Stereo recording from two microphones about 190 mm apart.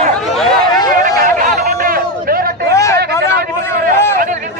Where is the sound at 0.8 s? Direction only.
45° right (ahead or behind).